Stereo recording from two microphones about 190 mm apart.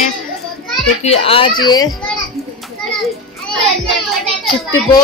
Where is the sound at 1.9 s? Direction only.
Centre (ahead or behind).